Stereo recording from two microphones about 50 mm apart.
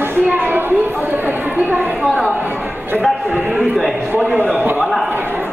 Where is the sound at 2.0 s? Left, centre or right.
Centre.